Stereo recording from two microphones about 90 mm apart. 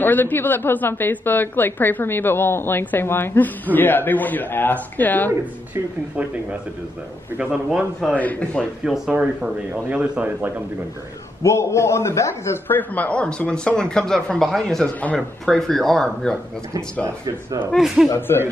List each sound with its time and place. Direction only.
0.0 s a woman's voice: 20° left (ahead or behind)
7.3 s a man's voice: 10° right (ahead or behind)
8.2 s speech: 15° left (ahead or behind)
8.8 s speech: 5° right (ahead or behind)
9.1 s a man's voice: 20° right (ahead or behind)
11.4 s a man's voice: 30° left (ahead or behind)
12.7 s speech: 15° left (ahead or behind)
17.7 s speech: 5° right (ahead or behind)
18.1 s a woman's voice: 25° left (ahead or behind)